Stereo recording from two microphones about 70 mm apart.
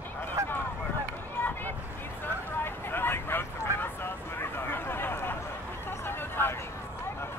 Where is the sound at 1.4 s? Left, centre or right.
Left.